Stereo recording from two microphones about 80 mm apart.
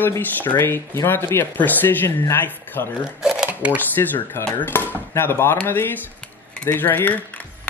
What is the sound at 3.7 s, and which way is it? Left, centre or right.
Speech, left.